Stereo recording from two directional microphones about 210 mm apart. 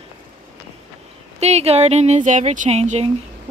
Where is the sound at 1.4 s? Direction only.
30° right (ahead or behind).